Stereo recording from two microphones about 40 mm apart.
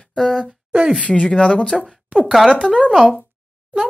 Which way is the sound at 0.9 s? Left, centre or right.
Left.